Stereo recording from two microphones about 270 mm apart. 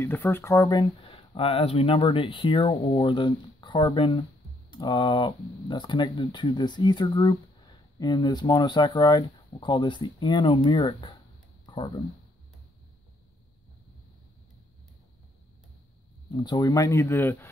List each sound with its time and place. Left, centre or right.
0.0 s speech: centre
11.6 s a sound: centre
16.3 s speech: centre